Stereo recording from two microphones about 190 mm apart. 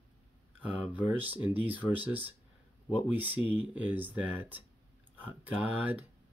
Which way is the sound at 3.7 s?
10° right (ahead or behind).